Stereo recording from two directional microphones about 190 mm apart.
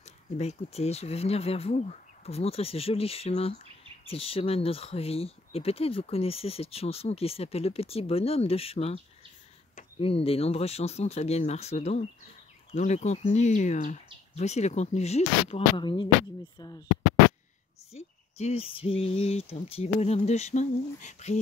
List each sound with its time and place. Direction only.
0.0 s speech: 35° left (ahead or behind)
17.9 s speech: 35° left (ahead or behind)